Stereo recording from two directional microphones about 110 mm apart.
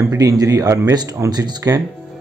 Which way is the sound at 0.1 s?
30° right (ahead or behind).